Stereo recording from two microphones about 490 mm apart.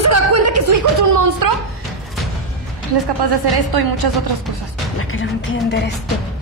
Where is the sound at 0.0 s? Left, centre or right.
Right.